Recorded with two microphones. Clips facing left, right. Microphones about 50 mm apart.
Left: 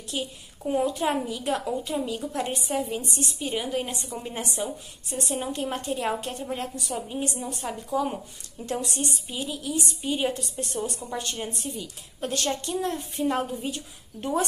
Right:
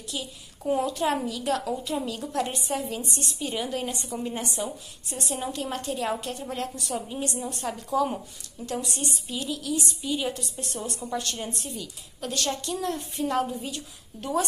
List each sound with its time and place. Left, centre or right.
0.1 s a woman's voice: left
0.7 s a woman's voice: centre
5.5 s speech: left
6.5 s a woman's voice: centre
8.8 s speech: left
10.0 s speech: left
11.3 s a woman's voice: centre
12.2 s a woman's voice: left